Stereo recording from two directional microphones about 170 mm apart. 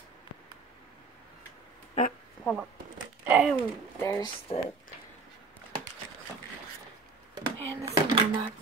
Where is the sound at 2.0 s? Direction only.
45° left (ahead or behind).